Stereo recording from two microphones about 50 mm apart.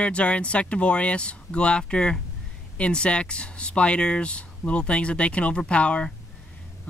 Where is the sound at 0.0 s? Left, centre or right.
Left.